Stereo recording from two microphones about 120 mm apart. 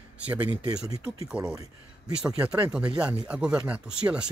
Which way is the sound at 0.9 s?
30° right (ahead or behind).